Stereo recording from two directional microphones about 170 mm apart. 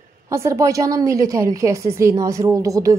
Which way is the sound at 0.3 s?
15° right (ahead or behind).